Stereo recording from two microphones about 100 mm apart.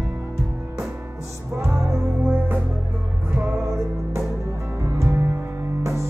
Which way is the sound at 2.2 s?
20° right (ahead or behind).